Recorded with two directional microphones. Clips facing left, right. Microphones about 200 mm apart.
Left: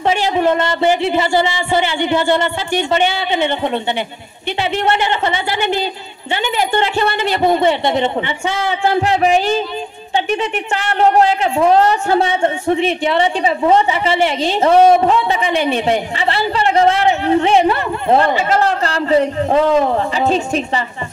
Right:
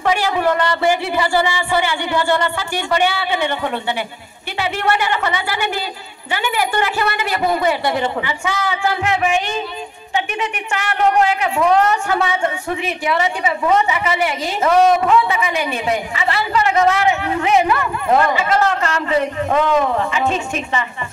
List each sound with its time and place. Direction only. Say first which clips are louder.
0.0 s a woman's voice: left 2 dB; 25° left (ahead or behind)